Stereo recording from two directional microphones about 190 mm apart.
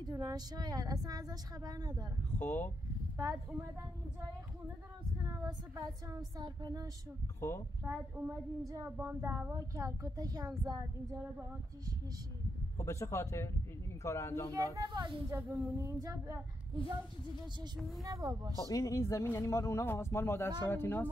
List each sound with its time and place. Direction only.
0.0 s speech: 20° right (ahead or behind)
2.3 s speech: 10° left (ahead or behind)
5.5 s speech: 15° right (ahead or behind)
7.3 s speech: 15° left (ahead or behind)
7.8 s speech: 15° right (ahead or behind)
12.7 s speech: 15° left (ahead or behind)
14.5 s speech: 20° right (ahead or behind)
17.7 s speech: centre (ahead or behind)
18.0 s speech: 15° right (ahead or behind)
18.6 s speech: 15° left (ahead or behind)